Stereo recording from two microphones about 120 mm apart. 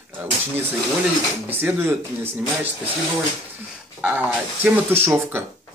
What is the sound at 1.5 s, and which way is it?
Speech, 15° right (ahead or behind).